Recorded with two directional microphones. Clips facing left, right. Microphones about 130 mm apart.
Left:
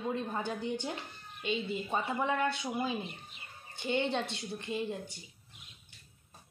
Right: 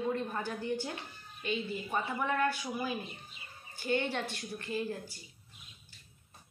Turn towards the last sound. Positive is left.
turn(degrees=20)  # may be behind; listen again after turning